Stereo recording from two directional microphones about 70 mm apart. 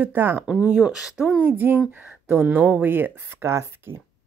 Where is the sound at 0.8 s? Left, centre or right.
Centre.